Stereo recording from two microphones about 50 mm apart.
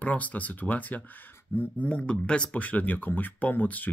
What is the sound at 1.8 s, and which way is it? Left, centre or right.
Speech, left.